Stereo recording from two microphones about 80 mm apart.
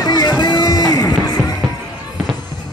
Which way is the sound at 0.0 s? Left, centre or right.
Left.